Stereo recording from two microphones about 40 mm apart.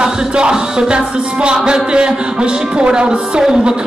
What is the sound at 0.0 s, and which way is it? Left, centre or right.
Music, right.